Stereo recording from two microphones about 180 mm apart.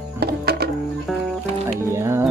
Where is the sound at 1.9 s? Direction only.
15° right (ahead or behind).